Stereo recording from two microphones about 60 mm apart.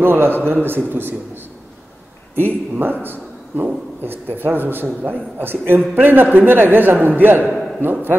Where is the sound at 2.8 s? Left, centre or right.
Right.